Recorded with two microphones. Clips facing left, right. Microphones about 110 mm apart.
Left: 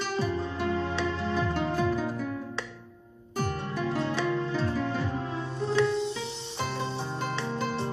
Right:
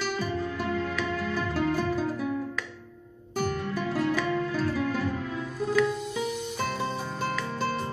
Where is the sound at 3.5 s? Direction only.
30° left (ahead or behind).